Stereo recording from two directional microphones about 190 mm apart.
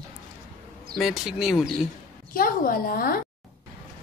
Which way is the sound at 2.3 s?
50° left (ahead or behind).